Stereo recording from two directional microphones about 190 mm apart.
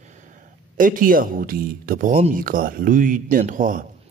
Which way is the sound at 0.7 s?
45° right (ahead or behind).